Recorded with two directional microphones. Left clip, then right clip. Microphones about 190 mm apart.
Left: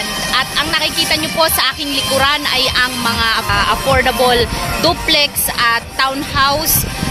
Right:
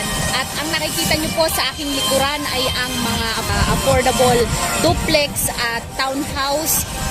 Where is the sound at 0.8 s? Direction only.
45° left (ahead or behind).